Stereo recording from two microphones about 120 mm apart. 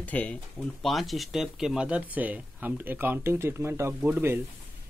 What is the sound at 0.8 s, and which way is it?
Speech, centre (ahead or behind).